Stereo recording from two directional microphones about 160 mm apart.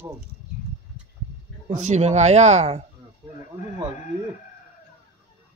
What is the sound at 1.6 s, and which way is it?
Speech, 45° right (ahead or behind).